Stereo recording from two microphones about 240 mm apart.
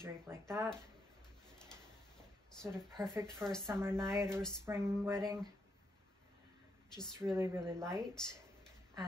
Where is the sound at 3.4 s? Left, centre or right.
Centre.